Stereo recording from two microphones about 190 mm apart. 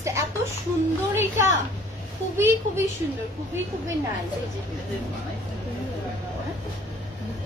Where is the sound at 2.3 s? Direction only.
10° right (ahead or behind).